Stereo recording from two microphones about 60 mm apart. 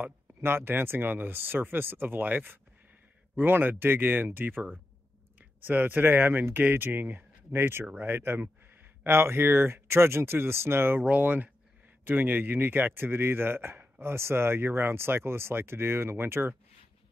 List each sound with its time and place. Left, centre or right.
0.0 s speech: right
11.1 s speech: right